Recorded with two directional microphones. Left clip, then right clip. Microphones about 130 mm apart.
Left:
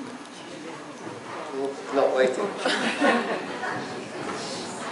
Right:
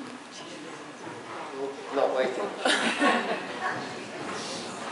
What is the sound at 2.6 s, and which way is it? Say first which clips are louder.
Chuckle: right 1 dB; 20° right (ahead or behind).